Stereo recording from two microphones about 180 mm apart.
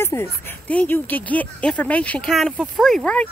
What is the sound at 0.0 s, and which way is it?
Speech, 15° left (ahead or behind).